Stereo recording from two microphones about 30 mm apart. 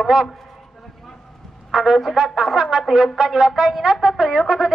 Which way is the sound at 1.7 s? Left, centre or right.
Centre.